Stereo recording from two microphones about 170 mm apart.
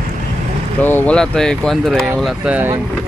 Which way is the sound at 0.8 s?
10° left (ahead or behind).